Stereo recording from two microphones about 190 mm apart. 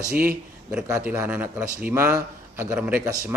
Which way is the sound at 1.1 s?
10° right (ahead or behind).